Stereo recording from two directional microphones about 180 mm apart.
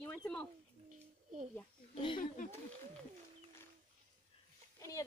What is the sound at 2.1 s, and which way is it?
Speech, 50° left (ahead or behind).